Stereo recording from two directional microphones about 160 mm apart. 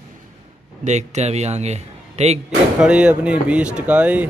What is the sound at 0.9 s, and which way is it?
Speech, 45° right (ahead or behind).